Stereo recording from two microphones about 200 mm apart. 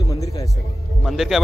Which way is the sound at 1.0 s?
Centre (ahead or behind).